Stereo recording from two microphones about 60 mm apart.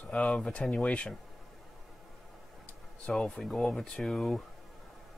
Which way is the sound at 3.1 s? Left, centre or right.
Centre.